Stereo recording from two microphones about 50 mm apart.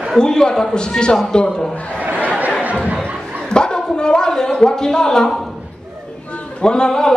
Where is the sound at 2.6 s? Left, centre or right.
Right.